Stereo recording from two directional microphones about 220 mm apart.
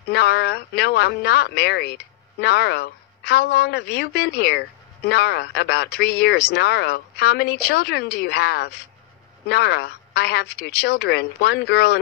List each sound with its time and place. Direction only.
0.1 s speech: 45° left (ahead or behind)